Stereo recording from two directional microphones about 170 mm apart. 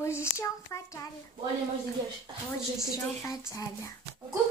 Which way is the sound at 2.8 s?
20° left (ahead or behind).